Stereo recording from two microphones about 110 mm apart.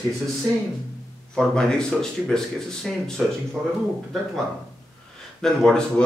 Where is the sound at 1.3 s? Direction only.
5° left (ahead or behind).